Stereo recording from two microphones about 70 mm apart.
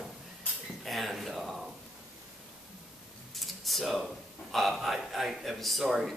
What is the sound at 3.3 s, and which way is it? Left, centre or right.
A man's voice, centre.